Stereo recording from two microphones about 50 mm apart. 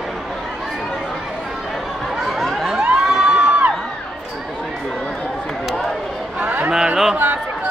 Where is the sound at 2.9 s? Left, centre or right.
Centre.